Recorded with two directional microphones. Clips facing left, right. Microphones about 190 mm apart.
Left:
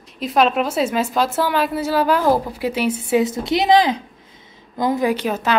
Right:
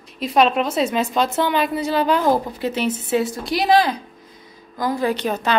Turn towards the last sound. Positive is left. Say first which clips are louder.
# left 1 dB
turn(degrees=5)  # may be behind; listen again after turning